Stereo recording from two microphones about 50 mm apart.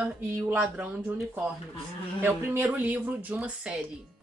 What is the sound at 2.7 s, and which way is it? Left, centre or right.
Speech, right.